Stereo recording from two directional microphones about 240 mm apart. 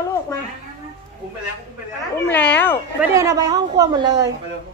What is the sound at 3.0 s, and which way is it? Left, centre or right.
A woman's voice, centre.